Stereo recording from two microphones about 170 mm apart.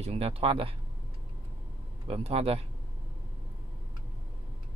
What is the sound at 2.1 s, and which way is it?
Speech, 35° right (ahead or behind).